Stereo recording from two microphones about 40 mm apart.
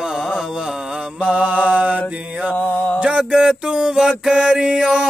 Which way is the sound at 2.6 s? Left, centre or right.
Left.